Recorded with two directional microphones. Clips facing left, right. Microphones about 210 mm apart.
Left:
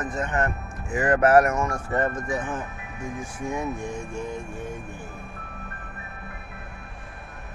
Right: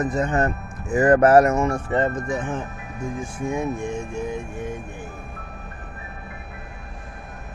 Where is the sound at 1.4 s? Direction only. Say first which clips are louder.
Right 4 dB; 25° right (ahead or behind).